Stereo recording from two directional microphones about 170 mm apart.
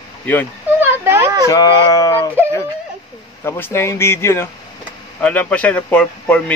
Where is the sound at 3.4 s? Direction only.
15° left (ahead or behind).